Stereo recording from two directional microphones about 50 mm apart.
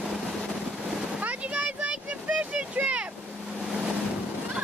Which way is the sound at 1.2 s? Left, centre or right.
Right.